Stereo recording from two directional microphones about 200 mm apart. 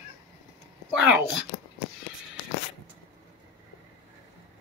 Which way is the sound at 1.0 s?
5° right (ahead or behind).